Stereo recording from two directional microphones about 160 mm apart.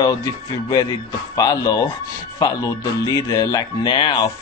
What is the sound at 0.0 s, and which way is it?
Speech, 25° left (ahead or behind).